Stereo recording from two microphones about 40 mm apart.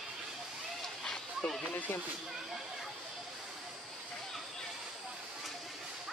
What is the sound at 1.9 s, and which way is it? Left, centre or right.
Speech, left.